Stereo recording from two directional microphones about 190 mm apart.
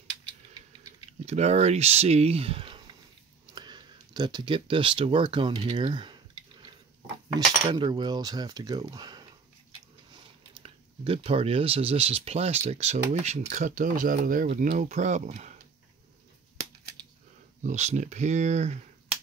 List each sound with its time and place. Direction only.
1.2 s speech: 35° right (ahead or behind)
7.6 s speech: 25° right (ahead or behind); by 15.6 s 40° right (ahead or behind)
17.6 s speech: 40° right (ahead or behind)